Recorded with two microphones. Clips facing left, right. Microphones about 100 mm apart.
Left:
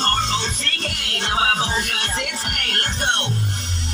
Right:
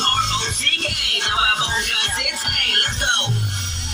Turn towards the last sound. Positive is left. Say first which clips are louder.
# even
turn(degrees=35)  # may be behind; listen again after turning